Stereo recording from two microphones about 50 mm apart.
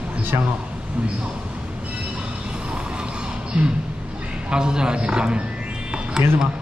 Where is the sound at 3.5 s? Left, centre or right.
Right.